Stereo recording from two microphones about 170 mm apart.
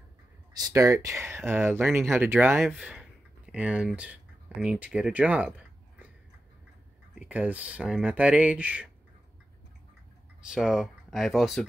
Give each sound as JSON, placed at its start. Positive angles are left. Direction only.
{"t": 0.6, "sound": "speech", "side_deg": -20}
{"t": 7.2, "sound": "speech", "side_deg": -10}
{"t": 10.5, "sound": "speech", "side_deg": -5}